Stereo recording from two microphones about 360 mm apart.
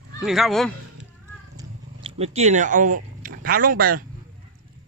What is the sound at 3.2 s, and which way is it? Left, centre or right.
Speech, right.